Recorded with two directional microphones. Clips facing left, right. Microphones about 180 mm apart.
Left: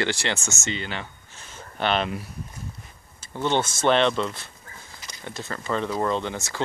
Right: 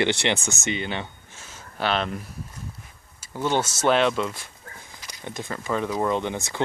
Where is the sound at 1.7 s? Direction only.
Centre (ahead or behind).